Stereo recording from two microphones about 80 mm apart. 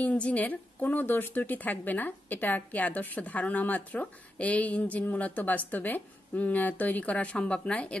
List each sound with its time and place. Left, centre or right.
0.0 s speech: centre